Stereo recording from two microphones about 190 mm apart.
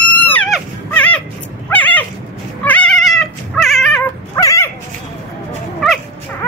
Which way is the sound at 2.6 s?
5° left (ahead or behind).